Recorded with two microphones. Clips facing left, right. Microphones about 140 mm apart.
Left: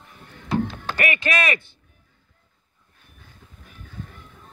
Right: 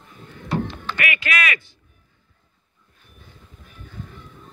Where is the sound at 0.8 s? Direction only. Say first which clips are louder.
Left 2 dB; 35° left (ahead or behind).